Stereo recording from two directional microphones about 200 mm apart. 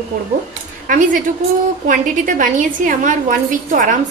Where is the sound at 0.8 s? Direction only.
40° right (ahead or behind).